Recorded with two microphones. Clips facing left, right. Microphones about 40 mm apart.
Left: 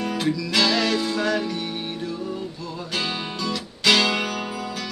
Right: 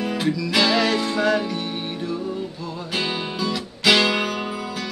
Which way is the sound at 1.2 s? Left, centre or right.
Centre.